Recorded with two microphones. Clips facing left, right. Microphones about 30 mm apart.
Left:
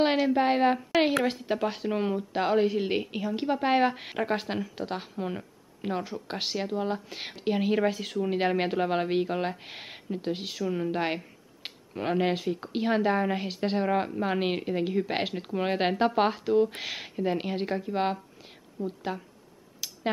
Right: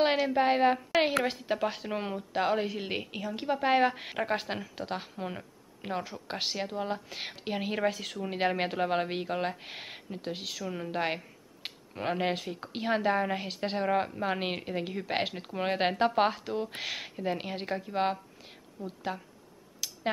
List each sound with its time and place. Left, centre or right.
0.0 s a woman's voice: centre